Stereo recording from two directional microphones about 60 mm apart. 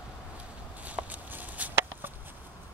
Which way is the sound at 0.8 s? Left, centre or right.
Right.